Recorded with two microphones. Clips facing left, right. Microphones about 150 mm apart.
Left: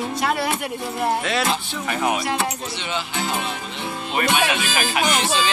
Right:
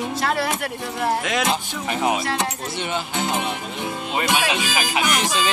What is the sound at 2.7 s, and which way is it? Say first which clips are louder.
Speech: right 2 dB; 50° right (ahead or behind).